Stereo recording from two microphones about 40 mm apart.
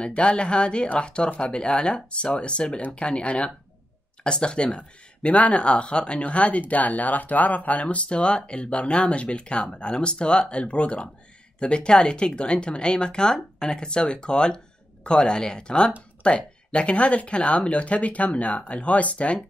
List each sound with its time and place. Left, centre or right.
0.0 s speech: left